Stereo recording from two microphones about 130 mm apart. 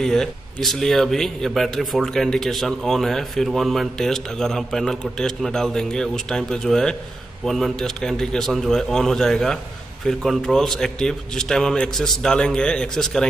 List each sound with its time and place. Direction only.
0.0 s a man's voice: 5° left (ahead or behind)